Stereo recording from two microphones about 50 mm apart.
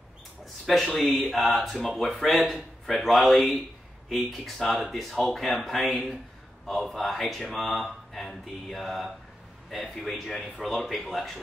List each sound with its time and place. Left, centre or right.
0.9 s speech: centre